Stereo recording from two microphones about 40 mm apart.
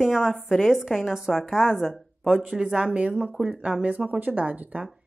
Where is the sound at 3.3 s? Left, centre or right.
Centre.